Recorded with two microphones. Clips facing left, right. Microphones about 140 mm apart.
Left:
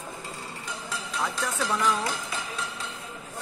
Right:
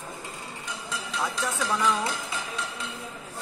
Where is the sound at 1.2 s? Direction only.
Centre (ahead or behind).